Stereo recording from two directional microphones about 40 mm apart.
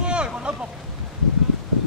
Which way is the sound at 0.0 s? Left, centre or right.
Right.